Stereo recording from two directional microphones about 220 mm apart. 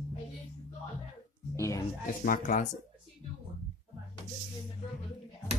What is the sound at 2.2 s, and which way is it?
Speech, 40° left (ahead or behind).